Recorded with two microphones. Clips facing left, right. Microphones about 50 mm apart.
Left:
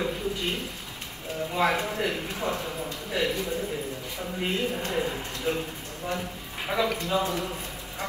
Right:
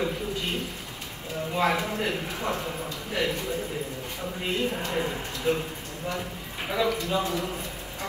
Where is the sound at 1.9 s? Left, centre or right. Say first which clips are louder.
Even; right.